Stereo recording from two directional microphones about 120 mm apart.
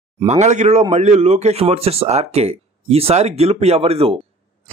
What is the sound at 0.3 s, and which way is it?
A man's voice, 75° right (ahead or behind).